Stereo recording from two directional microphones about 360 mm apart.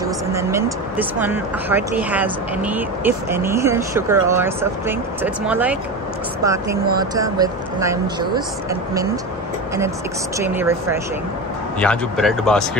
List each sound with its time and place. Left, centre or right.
0.0 s speech: centre
10.4 s speech: centre